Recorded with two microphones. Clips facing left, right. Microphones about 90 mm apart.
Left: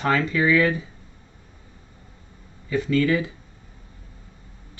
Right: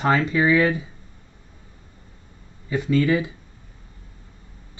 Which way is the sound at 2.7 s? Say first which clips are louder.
Right 1 dB; 20° right (ahead or behind).